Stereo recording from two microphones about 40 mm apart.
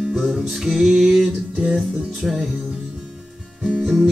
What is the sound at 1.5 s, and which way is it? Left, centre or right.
Music, right.